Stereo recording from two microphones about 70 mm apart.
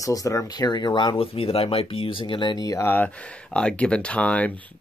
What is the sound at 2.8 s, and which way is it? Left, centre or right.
Speech, left.